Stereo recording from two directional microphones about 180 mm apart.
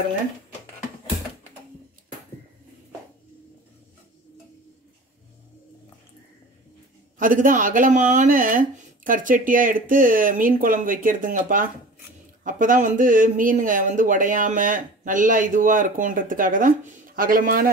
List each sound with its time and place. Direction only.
7.2 s speech: 45° right (ahead or behind)